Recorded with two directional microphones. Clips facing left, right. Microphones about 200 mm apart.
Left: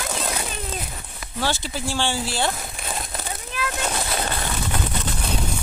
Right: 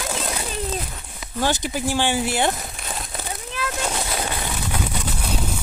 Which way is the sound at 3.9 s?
10° right (ahead or behind).